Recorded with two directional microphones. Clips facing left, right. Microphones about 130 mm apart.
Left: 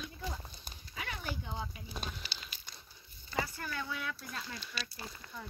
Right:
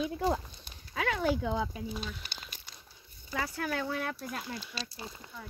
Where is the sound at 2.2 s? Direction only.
50° right (ahead or behind).